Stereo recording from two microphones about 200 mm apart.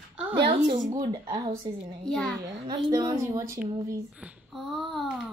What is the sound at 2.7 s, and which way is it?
A woman's voice, 20° right (ahead or behind).